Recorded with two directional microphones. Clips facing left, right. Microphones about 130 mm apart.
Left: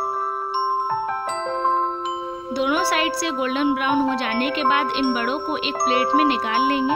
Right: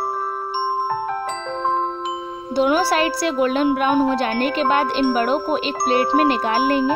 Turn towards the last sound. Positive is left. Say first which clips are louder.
# right 2 dB
turn(degrees=-45)  # may be behind; listen again after turning